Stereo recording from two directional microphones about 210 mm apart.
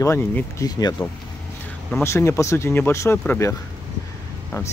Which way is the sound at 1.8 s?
5° left (ahead or behind).